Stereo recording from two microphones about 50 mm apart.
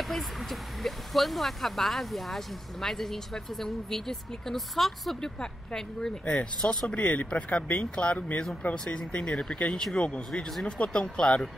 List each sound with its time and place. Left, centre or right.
0.1 s speech: centre